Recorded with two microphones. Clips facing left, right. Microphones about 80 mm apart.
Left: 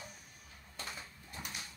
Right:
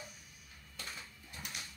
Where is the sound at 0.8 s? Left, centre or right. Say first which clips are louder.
Left 2 dB; left.